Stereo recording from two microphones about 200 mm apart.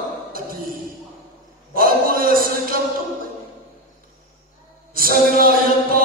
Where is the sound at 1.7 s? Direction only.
45° right (ahead or behind).